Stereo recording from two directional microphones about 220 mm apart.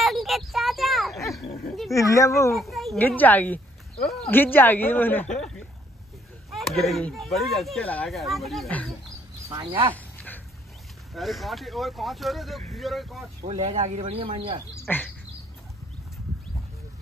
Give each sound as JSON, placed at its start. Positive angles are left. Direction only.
{"t": 0.0, "sound": "a sound", "side_deg": 0}
{"t": 1.9, "sound": "speech", "side_deg": 15}
{"t": 2.5, "sound": "speech", "side_deg": 0}
{"t": 9.5, "sound": "speech", "side_deg": -20}
{"t": 9.9, "sound": "dog", "side_deg": 5}
{"t": 11.1, "sound": "speech", "side_deg": 0}
{"t": 13.5, "sound": "speech", "side_deg": -30}
{"t": 14.9, "sound": "speech", "side_deg": 5}